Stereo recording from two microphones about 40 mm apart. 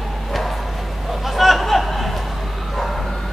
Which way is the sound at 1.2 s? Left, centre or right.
Centre.